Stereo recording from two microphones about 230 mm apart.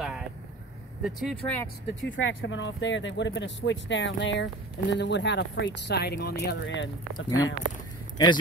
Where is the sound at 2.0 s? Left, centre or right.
Left.